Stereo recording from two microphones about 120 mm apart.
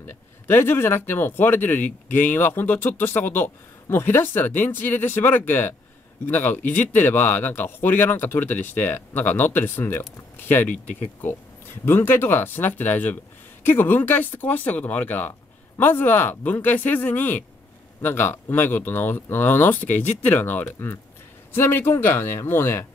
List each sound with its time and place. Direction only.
0.0 s speech: 20° left (ahead or behind)
11.8 s speech: 20° left (ahead or behind)